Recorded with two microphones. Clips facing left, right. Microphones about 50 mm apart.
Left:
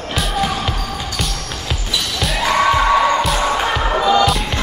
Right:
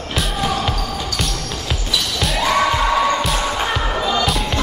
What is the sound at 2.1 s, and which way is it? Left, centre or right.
Music, centre.